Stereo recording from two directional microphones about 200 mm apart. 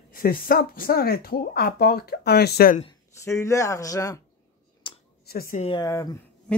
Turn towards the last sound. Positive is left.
turn(degrees=20)  # may be behind; listen again after turning